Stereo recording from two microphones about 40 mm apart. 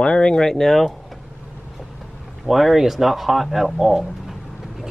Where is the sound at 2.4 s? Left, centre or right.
Centre.